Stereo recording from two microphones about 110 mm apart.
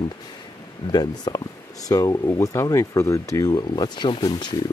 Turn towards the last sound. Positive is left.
turn(degrees=50)  # may be behind; listen again after turning